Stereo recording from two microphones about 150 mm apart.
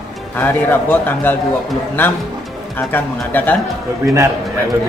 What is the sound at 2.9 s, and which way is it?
Speech, 10° left (ahead or behind).